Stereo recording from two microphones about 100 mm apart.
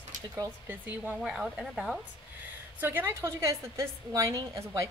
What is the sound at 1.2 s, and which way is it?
Speech, 5° right (ahead or behind).